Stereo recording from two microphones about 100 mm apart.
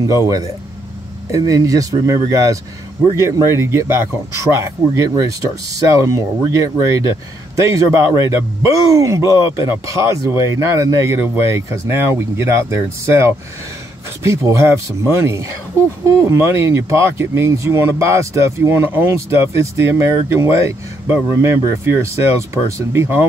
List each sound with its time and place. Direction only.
0.0 s speech: 35° right (ahead or behind)